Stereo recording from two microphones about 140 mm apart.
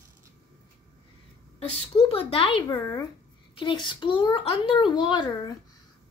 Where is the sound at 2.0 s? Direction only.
45° left (ahead or behind).